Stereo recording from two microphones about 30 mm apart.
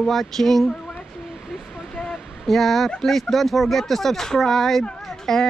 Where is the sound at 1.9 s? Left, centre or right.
Centre.